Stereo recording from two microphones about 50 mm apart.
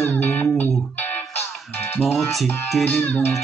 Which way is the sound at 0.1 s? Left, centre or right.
Left.